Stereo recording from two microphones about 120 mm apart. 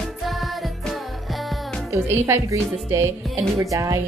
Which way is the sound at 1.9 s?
25° right (ahead or behind).